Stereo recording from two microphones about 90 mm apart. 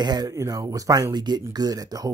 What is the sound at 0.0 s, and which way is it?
Speech, 50° right (ahead or behind).